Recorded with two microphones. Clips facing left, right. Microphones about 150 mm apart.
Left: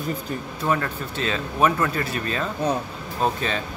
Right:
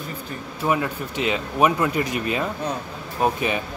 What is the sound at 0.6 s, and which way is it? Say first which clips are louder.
Speech: right 2 dB; 10° right (ahead or behind).